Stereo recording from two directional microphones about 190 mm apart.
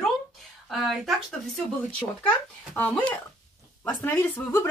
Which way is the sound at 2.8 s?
5° left (ahead or behind).